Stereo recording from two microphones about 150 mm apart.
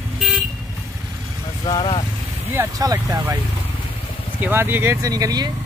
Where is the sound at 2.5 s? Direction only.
20° right (ahead or behind).